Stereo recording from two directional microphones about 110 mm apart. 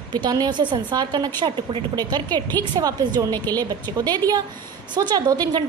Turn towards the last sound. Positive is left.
turn(degrees=-35)  # may be behind; listen again after turning